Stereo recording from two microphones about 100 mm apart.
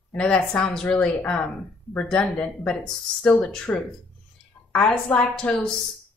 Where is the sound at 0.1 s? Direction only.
10° left (ahead or behind).